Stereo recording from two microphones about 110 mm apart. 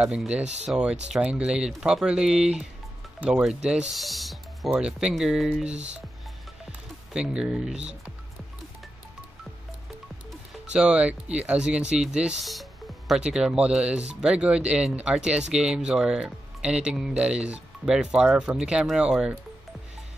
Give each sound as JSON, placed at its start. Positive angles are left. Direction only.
{"t": 0.0, "sound": "speech", "side_deg": -10}
{"t": 7.1, "sound": "speech", "side_deg": -5}
{"t": 10.7, "sound": "speech", "side_deg": -10}